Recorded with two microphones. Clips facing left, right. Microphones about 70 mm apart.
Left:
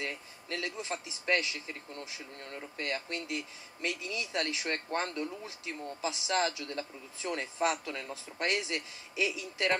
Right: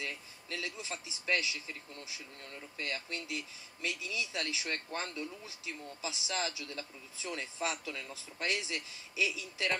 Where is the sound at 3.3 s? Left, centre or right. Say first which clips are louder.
Left 3 dB; left.